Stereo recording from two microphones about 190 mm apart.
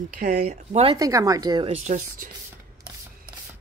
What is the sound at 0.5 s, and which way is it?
Speech, 35° right (ahead or behind).